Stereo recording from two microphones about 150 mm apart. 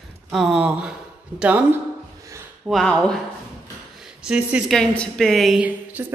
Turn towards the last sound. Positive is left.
turn(degrees=-10)  # may be behind; listen again after turning